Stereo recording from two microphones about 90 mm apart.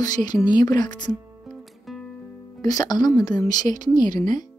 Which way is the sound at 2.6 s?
45° left (ahead or behind).